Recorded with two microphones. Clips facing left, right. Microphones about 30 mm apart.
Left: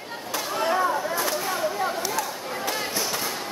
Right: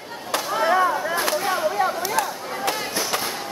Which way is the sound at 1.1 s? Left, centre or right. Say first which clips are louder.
Right 4 dB; right.